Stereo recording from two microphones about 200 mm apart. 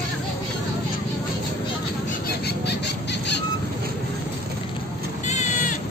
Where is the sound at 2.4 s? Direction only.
55° left (ahead or behind).